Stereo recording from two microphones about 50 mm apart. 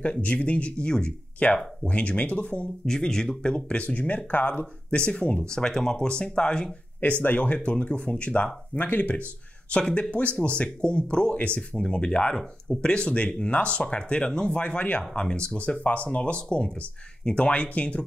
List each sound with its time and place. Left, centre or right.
0.0 s speech: left
2.8 s speech: centre
7.0 s speech: left